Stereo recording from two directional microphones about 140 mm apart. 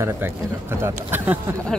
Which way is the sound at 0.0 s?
15° right (ahead or behind).